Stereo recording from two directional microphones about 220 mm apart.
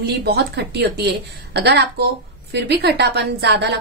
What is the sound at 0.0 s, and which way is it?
A woman's voice, 45° right (ahead or behind).